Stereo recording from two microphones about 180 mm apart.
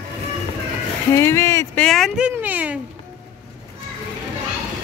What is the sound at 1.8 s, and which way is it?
Speech, centre (ahead or behind).